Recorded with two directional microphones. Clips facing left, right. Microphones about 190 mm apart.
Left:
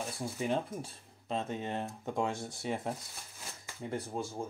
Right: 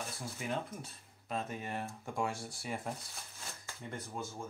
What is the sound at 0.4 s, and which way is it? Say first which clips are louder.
Speech: left 5 dB; 30° left (ahead or behind).